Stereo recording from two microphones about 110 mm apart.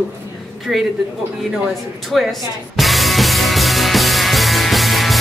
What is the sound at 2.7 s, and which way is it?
Music, centre (ahead or behind).